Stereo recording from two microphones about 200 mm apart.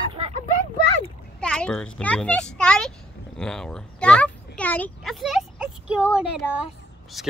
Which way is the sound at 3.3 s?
5° left (ahead or behind).